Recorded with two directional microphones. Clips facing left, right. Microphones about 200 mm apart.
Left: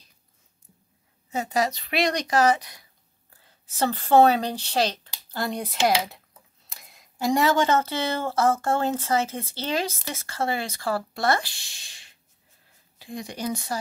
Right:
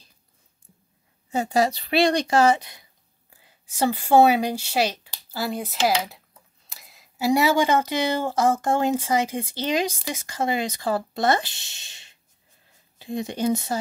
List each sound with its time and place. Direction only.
1.3 s speech: 30° right (ahead or behind)
3.3 s a woman's voice: 10° right (ahead or behind)